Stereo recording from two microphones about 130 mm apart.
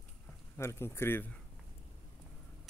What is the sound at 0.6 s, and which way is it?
Speech, 20° left (ahead or behind).